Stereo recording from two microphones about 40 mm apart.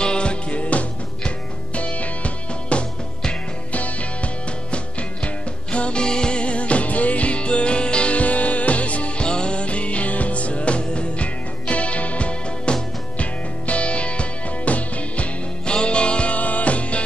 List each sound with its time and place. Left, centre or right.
0.0 s music: left
9.2 s music: left
15.6 s music: left